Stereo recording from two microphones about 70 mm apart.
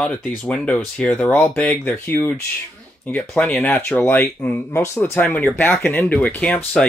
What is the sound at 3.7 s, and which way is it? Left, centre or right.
Speech, left.